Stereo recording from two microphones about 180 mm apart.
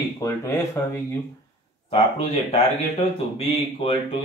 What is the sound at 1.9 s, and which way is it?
Speech, 35° left (ahead or behind).